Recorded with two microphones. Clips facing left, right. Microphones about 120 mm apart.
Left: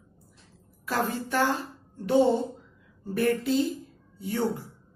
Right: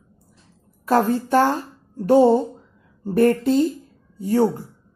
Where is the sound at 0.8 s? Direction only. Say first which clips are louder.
Right 10 dB; 45° right (ahead or behind).